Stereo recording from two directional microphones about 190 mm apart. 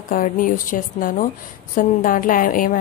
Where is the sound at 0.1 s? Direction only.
45° left (ahead or behind).